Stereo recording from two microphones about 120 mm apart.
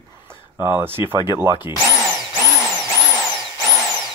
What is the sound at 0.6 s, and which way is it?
Speech, 20° right (ahead or behind).